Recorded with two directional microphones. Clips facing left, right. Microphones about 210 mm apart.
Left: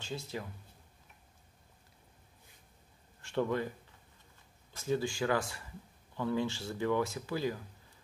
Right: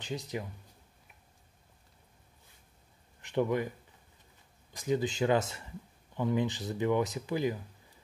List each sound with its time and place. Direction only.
0.0 s speech: 15° right (ahead or behind)
3.2 s speech: 15° right (ahead or behind)
4.7 s speech: 15° right (ahead or behind)